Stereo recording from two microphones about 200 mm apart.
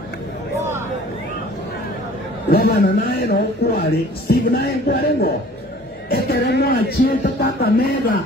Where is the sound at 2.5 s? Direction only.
50° left (ahead or behind).